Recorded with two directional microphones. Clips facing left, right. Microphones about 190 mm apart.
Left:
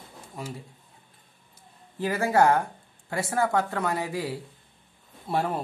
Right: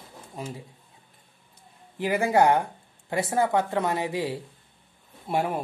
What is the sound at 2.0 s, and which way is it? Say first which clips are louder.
A woman's voice: right 1 dB; 15° right (ahead or behind).